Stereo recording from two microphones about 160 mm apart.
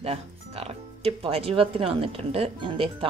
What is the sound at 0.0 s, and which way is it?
Speech, 40° right (ahead or behind).